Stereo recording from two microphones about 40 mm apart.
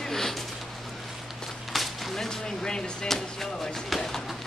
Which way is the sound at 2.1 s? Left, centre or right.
Centre.